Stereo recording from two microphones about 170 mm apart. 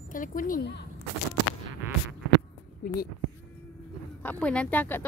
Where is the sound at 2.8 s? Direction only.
60° left (ahead or behind).